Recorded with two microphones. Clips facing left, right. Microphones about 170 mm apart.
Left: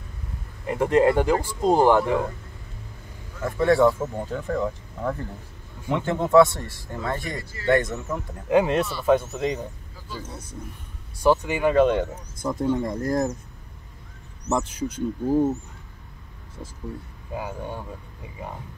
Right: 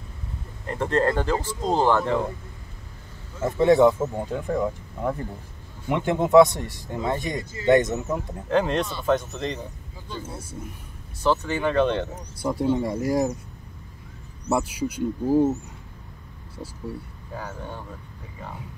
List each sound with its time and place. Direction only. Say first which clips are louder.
0.7 s speech: left 4 dB; 10° left (ahead or behind)
3.3 s speech: right 2 dB; 20° right (ahead or behind)
8.5 s speech: left 3 dB; 10° left (ahead or behind)
10.2 s speech: right 2 dB; 5° right (ahead or behind)
11.1 s speech: left 3 dB; 10° left (ahead or behind)
12.4 s speech: right 1 dB; 10° right (ahead or behind)
14.5 s speech: right 1 dB; 10° right (ahead or behind)
17.3 s speech: left 4 dB; 15° left (ahead or behind)